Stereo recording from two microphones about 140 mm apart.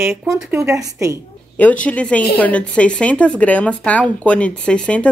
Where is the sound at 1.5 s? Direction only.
10° left (ahead or behind).